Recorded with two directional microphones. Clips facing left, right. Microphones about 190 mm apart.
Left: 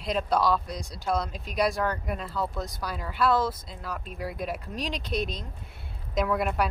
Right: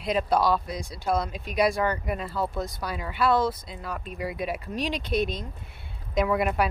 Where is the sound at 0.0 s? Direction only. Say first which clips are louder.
Right 2 dB; 5° right (ahead or behind).